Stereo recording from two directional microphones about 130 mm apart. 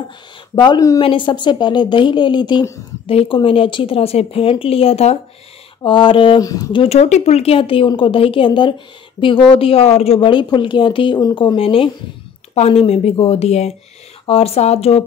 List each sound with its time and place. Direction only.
0.6 s a woman's voice: 30° left (ahead or behind); by 5.2 s 50° left (ahead or behind)
5.8 s a woman's voice: 40° left (ahead or behind)
6.4 s a woman's voice: 30° left (ahead or behind)
6.9 s a woman's voice: 55° left (ahead or behind)